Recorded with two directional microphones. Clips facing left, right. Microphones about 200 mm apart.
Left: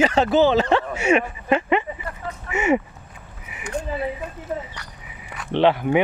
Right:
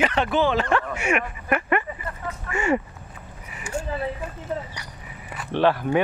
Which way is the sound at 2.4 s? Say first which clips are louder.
Left 3 dB; 20° left (ahead or behind).